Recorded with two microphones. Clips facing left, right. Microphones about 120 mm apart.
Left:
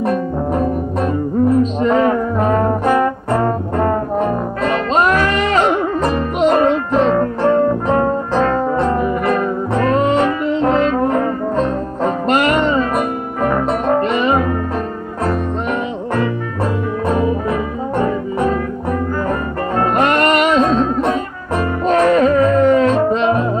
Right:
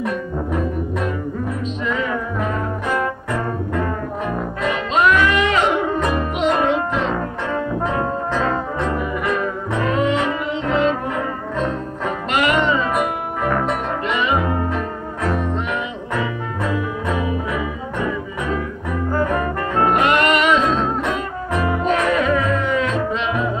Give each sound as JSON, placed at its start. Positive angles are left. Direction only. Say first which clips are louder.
{"t": 0.0, "sound": "music", "louder": "left 6 dB", "side_deg": 40}
{"t": 1.6, "sound": "music", "louder": "left 10 dB", "side_deg": 45}
{"t": 8.7, "sound": "music", "louder": "left 6 dB", "side_deg": 40}
{"t": 17.1, "sound": "music", "louder": "left 6 dB", "side_deg": 40}